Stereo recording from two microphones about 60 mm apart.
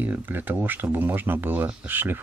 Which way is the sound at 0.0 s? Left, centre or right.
Right.